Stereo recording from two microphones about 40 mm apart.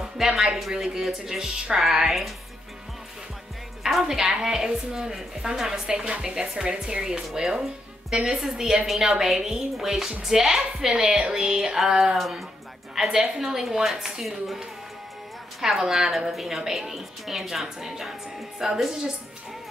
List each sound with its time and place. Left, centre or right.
0.2 s a woman's voice: centre
4.0 s a woman's voice: centre
15.6 s a woman's voice: centre